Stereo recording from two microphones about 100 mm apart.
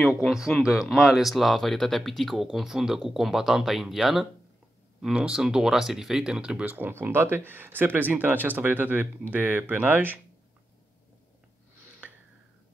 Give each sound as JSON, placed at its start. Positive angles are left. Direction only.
{"t": 0.2, "sound": "speech", "side_deg": 0}